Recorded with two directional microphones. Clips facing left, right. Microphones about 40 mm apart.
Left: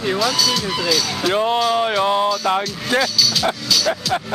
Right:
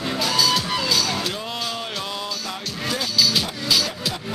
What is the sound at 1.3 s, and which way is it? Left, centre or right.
Speech, left.